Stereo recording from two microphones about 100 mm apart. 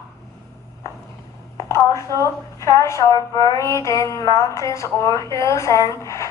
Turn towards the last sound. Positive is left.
turn(degrees=30)  # may be behind; listen again after turning